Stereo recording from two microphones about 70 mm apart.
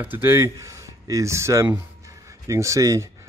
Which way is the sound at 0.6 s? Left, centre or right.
Right.